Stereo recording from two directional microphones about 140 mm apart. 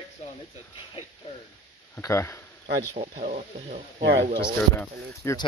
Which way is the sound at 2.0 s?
20° left (ahead or behind).